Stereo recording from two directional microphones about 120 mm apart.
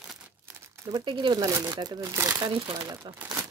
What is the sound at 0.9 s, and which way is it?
Speech, 40° right (ahead or behind).